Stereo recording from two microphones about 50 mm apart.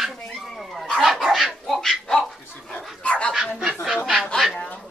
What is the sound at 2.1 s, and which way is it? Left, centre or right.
Dog, centre.